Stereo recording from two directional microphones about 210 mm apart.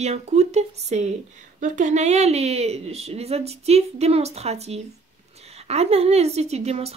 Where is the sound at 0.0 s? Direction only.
30° right (ahead or behind).